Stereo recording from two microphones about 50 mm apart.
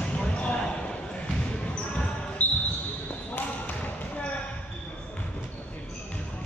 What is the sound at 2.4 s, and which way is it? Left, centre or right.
Basketball bounce, left.